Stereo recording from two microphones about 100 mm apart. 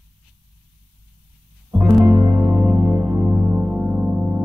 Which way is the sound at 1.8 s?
25° right (ahead or behind).